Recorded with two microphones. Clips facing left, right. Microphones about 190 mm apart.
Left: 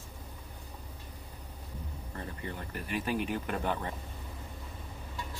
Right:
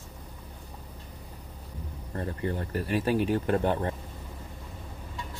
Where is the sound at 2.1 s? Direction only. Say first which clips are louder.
Right 9 dB; 45° right (ahead or behind).